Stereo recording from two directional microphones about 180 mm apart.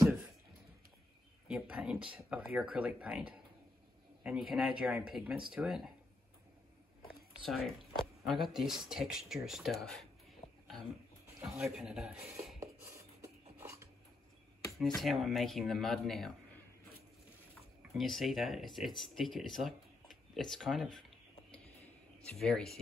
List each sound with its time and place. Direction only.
1.5 s speech: 5° right (ahead or behind)
7.0 s a sound: centre (ahead or behind)
8.3 s speech: centre (ahead or behind)
11.4 s speech: 5° right (ahead or behind)
13.2 s a sound: 15° right (ahead or behind)
14.7 s speech: centre (ahead or behind)
17.9 s speech: centre (ahead or behind)
22.2 s speech: centre (ahead or behind)